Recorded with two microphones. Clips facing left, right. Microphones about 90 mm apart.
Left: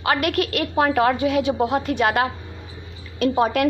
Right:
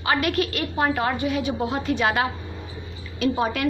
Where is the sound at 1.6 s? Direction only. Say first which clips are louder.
Left 3 dB; 60° left (ahead or behind).